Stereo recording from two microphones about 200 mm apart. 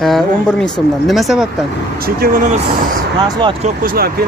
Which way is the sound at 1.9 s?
50° right (ahead or behind).